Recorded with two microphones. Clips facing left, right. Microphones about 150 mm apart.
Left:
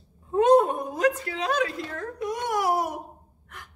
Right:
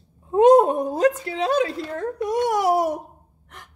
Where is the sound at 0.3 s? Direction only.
35° right (ahead or behind).